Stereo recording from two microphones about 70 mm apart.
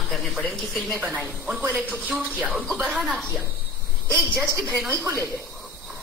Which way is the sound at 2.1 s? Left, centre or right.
Centre.